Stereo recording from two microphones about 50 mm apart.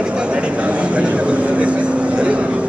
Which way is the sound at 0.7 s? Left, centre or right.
Right.